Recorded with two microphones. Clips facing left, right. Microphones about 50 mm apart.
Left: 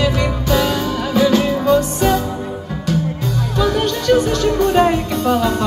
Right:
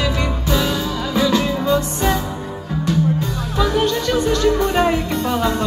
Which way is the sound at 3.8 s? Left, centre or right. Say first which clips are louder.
Left 3 dB; left.